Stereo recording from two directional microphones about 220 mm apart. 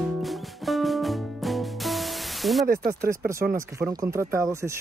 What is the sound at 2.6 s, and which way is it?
Speech, 40° right (ahead or behind).